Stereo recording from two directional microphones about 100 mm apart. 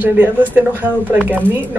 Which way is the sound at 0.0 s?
20° right (ahead or behind).